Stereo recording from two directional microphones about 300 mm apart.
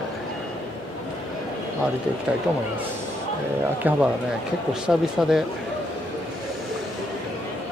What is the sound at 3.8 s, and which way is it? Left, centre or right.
Speech, centre.